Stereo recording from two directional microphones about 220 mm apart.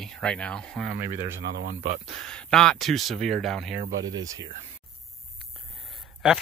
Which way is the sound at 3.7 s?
55° right (ahead or behind).